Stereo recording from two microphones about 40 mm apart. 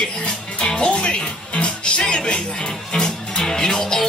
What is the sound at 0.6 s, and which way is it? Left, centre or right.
Music, left.